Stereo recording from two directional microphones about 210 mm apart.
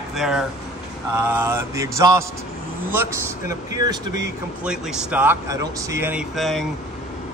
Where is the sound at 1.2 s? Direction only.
10° right (ahead or behind).